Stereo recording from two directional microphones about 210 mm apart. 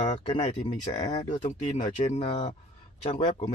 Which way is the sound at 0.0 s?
35° left (ahead or behind).